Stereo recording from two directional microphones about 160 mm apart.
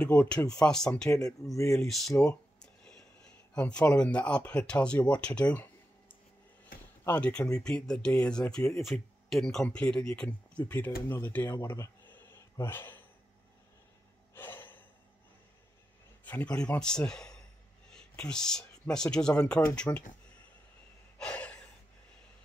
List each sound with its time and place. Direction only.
0.0 s speech: 5° left (ahead or behind)
1.2 s speech: 20° left (ahead or behind)
1.8 s speech: centre (ahead or behind)
14.3 s gasp: 15° left (ahead or behind)
16.3 s speech: 10° left (ahead or behind)
21.2 s gasp: 5° left (ahead or behind)